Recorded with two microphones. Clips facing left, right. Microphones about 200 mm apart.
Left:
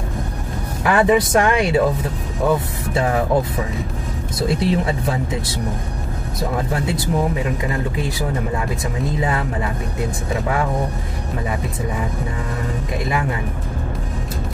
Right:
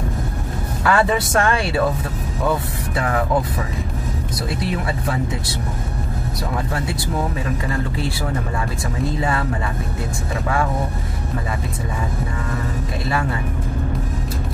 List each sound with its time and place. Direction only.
0.8 s speech: 20° left (ahead or behind)
2.9 s speech: 25° left (ahead or behind)
4.4 s speech: 20° left (ahead or behind)
9.0 s speech: 20° left (ahead or behind)